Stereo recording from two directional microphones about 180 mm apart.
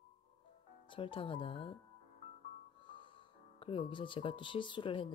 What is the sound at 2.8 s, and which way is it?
Speech, 25° left (ahead or behind).